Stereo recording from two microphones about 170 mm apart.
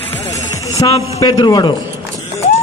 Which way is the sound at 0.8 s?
20° left (ahead or behind).